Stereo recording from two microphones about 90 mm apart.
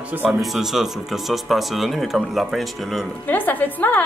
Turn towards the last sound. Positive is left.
turn(degrees=20)  # may be behind; listen again after turning